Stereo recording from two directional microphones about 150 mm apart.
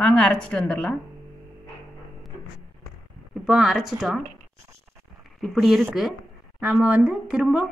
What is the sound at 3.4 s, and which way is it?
Speech, 5° right (ahead or behind).